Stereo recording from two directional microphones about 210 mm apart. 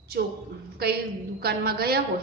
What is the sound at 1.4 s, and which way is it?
Speech, 45° right (ahead or behind).